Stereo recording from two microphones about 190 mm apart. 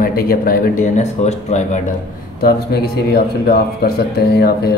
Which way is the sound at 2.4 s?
55° left (ahead or behind).